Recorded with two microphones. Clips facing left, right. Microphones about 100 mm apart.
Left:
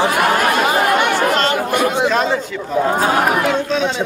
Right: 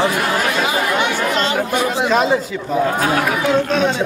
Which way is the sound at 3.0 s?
45° left (ahead or behind).